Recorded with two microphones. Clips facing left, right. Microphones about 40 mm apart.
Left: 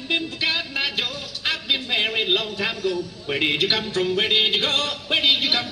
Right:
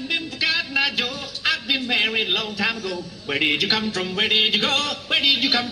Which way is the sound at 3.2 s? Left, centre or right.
Centre.